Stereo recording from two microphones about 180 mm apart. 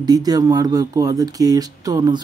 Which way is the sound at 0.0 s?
20° right (ahead or behind).